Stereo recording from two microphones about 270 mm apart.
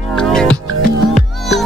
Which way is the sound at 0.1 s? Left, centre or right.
Centre.